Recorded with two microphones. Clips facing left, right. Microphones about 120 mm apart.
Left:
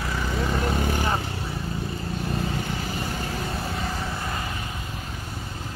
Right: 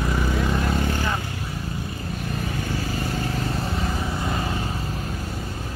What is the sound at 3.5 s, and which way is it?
Vehicle, centre (ahead or behind).